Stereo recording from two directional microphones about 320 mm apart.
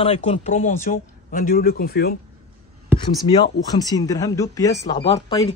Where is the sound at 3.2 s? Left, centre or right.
Centre.